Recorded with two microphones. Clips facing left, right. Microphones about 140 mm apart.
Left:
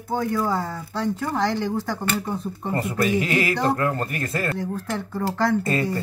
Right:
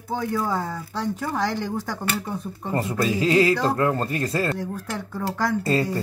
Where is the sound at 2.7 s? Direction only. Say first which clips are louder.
Left 1 dB; 25° right (ahead or behind).